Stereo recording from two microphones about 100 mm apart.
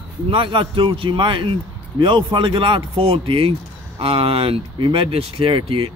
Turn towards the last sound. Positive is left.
turn(degrees=-65)  # may be behind; listen again after turning